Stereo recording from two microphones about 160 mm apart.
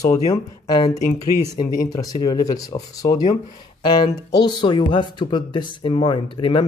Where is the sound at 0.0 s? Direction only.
20° left (ahead or behind).